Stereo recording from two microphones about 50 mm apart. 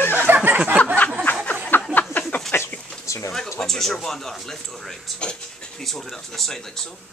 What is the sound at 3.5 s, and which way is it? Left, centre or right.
Speech, centre.